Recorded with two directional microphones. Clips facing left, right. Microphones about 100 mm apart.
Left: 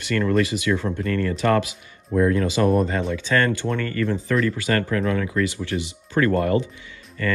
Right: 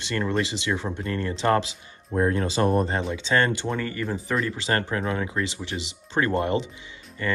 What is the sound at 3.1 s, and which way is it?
Speech, 20° right (ahead or behind).